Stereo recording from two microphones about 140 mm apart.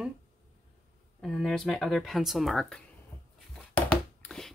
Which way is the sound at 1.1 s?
5° left (ahead or behind).